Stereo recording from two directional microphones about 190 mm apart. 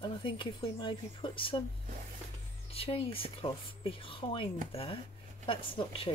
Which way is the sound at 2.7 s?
30° left (ahead or behind).